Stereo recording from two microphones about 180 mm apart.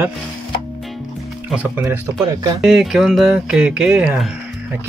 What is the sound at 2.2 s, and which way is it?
Speech, 20° right (ahead or behind).